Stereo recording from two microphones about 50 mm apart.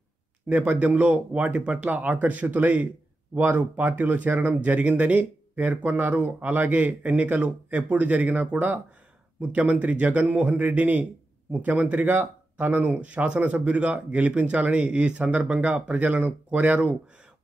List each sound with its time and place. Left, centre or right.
0.6 s speech: right